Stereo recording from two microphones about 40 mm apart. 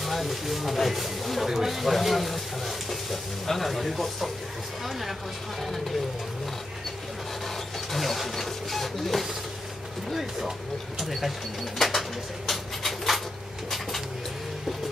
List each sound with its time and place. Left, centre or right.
0.0 s speech: centre
5.6 s speech: centre
7.4 s printer: centre
11.0 s speech: centre
11.8 s a sound: centre